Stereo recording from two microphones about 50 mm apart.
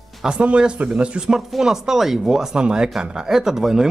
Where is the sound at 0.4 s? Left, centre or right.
Right.